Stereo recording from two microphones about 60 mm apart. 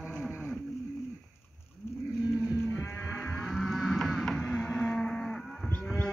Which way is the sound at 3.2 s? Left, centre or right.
Centre.